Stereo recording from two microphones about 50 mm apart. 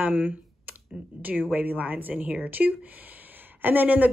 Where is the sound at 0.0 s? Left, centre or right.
Right.